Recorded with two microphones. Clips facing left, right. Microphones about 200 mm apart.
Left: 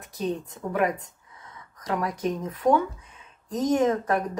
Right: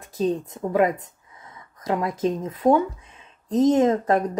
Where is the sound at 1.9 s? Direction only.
25° right (ahead or behind).